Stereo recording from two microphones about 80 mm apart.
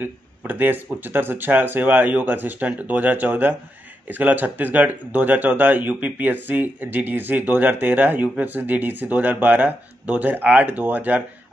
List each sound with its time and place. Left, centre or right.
0.0 s speech: right